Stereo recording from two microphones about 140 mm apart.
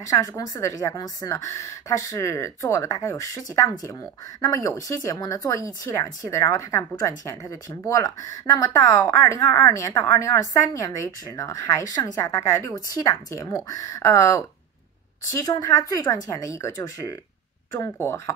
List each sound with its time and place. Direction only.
0.0 s speech: 25° left (ahead or behind)